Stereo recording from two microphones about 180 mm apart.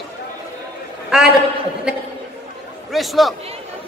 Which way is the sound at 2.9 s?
Centre (ahead or behind).